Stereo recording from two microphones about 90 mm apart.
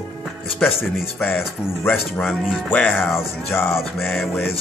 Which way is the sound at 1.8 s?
20° left (ahead or behind).